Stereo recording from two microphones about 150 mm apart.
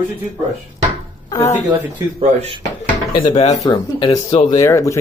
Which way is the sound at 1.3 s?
20° left (ahead or behind).